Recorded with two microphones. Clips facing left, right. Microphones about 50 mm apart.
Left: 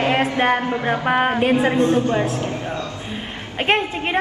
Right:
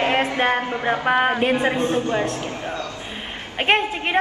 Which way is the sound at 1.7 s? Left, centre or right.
Right.